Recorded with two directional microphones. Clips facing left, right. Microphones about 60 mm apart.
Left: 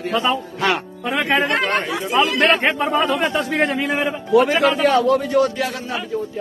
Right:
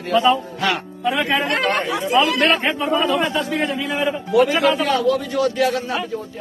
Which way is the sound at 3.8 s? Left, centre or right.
Left.